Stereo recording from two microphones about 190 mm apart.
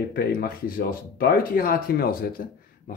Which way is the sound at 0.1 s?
50° left (ahead or behind).